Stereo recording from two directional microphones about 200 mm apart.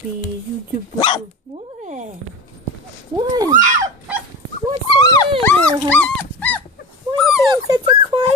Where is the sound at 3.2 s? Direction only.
20° right (ahead or behind).